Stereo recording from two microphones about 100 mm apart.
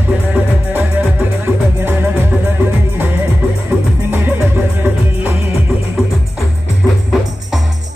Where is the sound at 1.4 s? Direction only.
20° right (ahead or behind).